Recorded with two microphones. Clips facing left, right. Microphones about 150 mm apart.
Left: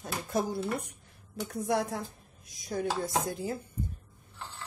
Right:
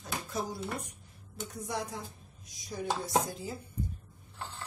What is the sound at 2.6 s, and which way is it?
Dishes, 50° left (ahead or behind).